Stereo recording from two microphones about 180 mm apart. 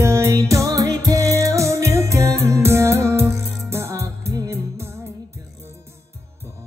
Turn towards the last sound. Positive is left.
turn(degrees=-15)  # may be behind; listen again after turning